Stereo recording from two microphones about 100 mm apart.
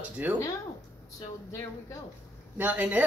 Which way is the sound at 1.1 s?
35° left (ahead or behind).